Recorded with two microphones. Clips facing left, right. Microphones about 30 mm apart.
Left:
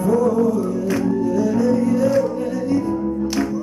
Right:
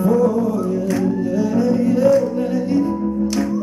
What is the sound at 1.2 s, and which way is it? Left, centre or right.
Music, centre.